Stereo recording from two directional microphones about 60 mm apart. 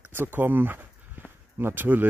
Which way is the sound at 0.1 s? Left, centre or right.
Right.